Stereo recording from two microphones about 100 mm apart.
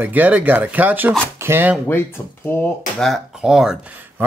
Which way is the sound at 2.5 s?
20° left (ahead or behind).